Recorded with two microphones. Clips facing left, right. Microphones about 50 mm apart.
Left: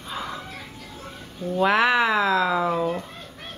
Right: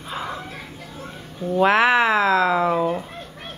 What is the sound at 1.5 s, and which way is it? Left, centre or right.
Speech, centre.